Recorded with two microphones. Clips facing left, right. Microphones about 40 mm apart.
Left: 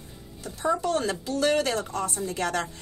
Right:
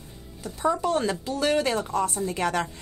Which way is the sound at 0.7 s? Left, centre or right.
Centre.